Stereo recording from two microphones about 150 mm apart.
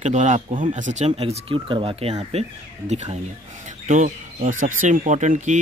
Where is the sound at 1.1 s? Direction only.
40° right (ahead or behind).